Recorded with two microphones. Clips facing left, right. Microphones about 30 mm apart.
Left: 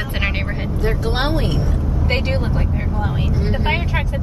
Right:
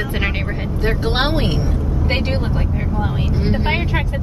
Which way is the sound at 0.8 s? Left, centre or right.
Right.